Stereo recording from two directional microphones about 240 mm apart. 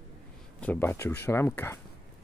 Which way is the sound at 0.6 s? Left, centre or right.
Centre.